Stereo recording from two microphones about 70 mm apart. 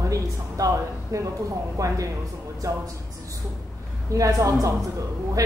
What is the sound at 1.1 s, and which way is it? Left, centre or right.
Speech, right.